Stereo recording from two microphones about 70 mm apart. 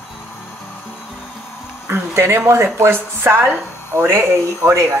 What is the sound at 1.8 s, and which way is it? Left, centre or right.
A woman's voice, right.